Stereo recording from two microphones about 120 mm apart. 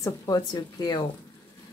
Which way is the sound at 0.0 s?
30° left (ahead or behind).